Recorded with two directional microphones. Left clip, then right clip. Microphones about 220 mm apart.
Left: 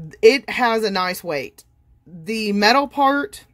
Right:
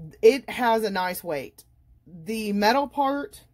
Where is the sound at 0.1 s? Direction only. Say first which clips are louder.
Left 5 dB; 20° left (ahead or behind).